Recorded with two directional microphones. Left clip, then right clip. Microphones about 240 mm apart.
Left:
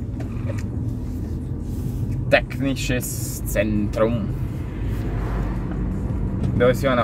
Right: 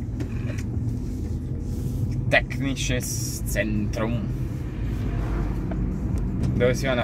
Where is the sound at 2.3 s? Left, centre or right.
Centre.